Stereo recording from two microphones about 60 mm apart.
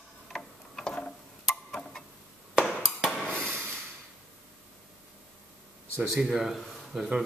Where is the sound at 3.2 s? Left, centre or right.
Centre.